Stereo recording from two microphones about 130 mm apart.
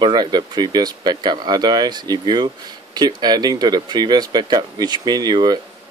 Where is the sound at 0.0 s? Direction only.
35° right (ahead or behind).